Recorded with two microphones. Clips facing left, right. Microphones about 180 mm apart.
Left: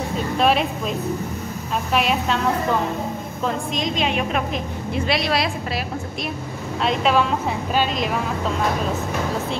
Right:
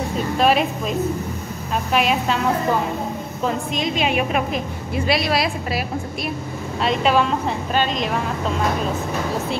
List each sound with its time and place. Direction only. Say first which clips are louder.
0.4 s speech: right 1 dB; centre (ahead or behind)
3.4 s speech: right 1 dB; 5° right (ahead or behind)
6.8 s speech: right 1 dB; centre (ahead or behind)